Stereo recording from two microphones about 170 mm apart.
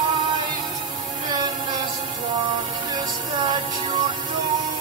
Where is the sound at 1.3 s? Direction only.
25° right (ahead or behind).